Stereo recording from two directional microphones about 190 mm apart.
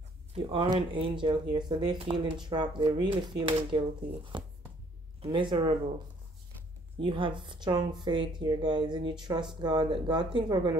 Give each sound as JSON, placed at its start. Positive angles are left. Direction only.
{"t": 0.3, "sound": "speech", "side_deg": -30}
{"t": 7.0, "sound": "speech", "side_deg": -25}